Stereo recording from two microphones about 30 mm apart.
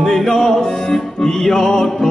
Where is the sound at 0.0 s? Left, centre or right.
Centre.